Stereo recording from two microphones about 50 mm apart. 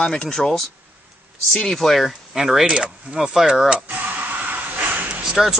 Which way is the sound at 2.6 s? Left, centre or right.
Centre.